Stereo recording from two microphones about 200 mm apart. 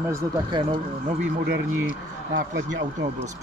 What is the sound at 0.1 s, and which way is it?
Speech, 20° right (ahead or behind).